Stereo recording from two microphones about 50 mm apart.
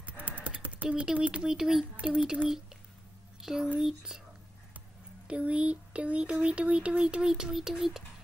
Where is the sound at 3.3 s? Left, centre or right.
Centre.